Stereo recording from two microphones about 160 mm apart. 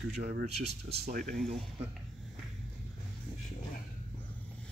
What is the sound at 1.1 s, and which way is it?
Speech, 65° right (ahead or behind).